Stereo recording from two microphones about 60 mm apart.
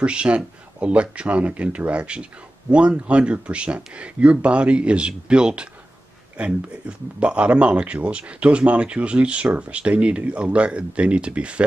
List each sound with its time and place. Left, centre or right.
0.0 s speech: centre